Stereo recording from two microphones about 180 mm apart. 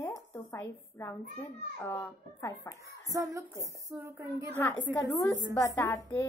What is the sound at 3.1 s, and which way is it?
A woman's voice, 20° right (ahead or behind).